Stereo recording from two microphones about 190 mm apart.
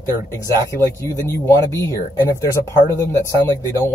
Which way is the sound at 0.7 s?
15° left (ahead or behind).